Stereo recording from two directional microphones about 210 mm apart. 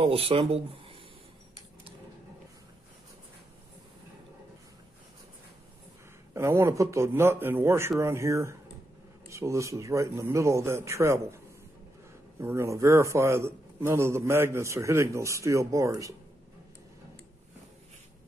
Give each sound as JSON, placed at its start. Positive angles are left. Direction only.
{"t": 0.0, "sound": "speech", "side_deg": -25}
{"t": 6.3, "sound": "a man's voice", "side_deg": -15}